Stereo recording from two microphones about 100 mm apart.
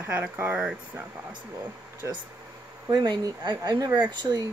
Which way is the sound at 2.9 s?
45° right (ahead or behind).